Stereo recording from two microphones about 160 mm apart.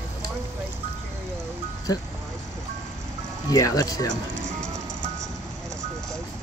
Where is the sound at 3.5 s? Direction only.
20° left (ahead or behind).